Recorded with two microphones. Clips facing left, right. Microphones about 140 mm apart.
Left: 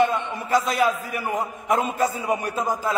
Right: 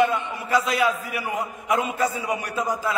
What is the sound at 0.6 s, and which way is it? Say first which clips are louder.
Speech: left 1 dB; 40° left (ahead or behind).